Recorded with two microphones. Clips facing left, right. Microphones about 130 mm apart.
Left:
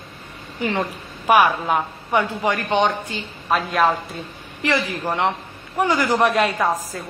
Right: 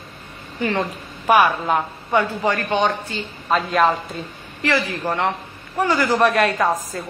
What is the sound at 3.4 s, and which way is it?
Speech, 5° left (ahead or behind).